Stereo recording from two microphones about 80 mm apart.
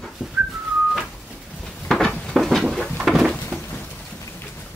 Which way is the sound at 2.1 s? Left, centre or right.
Centre.